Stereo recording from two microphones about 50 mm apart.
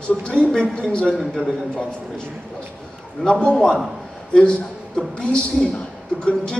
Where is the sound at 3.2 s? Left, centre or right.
Centre.